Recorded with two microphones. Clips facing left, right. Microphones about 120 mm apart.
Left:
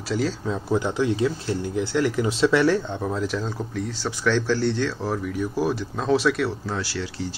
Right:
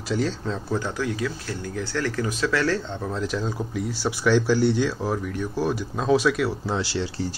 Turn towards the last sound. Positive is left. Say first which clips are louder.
# right 3 dB
turn(degrees=-25)  # may be behind; listen again after turning